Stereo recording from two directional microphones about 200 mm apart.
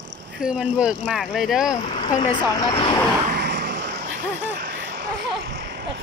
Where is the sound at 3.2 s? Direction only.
55° right (ahead or behind).